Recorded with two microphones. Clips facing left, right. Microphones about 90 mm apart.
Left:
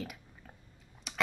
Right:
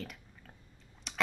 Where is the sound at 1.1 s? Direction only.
5° left (ahead or behind).